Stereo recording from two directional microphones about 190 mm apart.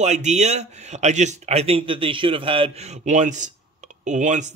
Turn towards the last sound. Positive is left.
turn(degrees=-40)  # may be behind; listen again after turning